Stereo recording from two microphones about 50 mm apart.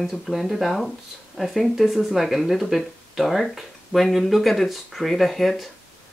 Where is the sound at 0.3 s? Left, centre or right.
Centre.